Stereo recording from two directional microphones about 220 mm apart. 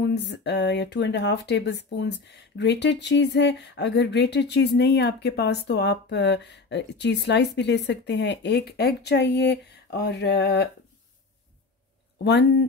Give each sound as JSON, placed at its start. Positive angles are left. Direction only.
{"t": 0.0, "sound": "speech", "side_deg": 50}
{"t": 12.2, "sound": "speech", "side_deg": 50}